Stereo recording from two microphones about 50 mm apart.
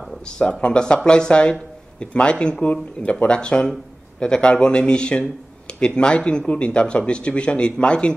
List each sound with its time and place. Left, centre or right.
0.2 s speech: centre